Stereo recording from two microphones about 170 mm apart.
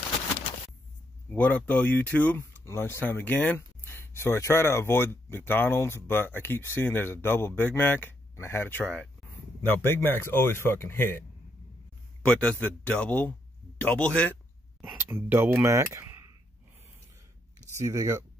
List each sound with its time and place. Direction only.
1.3 s speech: 10° left (ahead or behind)
12.3 s speech: 5° left (ahead or behind)
14.8 s speech: 10° right (ahead or behind)
17.7 s speech: 20° right (ahead or behind)